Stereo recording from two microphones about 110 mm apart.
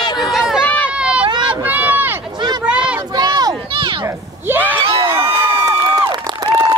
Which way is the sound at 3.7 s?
50° right (ahead or behind).